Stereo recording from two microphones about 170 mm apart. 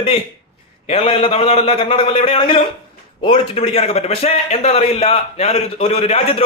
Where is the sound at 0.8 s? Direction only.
35° left (ahead or behind).